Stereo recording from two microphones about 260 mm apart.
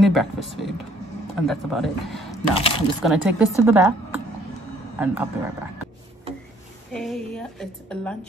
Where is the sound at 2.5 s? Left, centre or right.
Left.